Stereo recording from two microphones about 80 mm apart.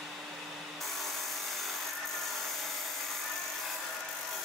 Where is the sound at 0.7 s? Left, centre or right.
Centre.